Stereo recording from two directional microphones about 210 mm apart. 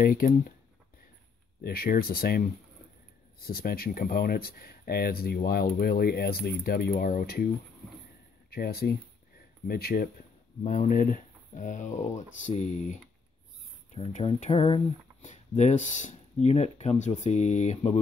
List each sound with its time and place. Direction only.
0.0 s speech: 40° left (ahead or behind)
1.6 s speech: 45° left (ahead or behind)
8.5 s speech: 45° left (ahead or behind)
10.6 s speech: 35° left (ahead or behind)